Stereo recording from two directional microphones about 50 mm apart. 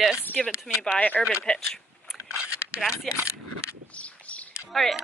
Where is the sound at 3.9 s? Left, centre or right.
Left.